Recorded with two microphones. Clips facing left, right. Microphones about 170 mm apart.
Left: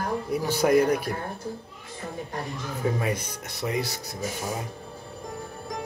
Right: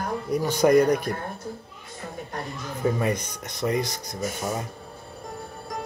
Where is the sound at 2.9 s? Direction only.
5° left (ahead or behind).